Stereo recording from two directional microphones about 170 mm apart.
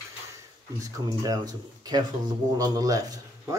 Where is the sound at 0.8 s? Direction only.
20° right (ahead or behind).